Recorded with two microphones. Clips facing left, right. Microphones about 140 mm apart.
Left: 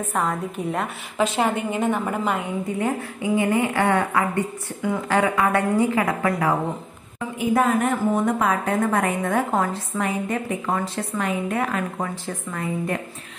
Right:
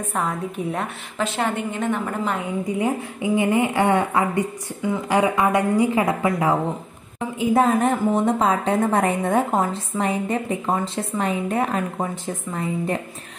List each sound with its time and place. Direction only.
0.1 s a woman's voice: centre (ahead or behind)
1.1 s a woman's voice: 15° left (ahead or behind)
2.6 s a woman's voice: 15° right (ahead or behind)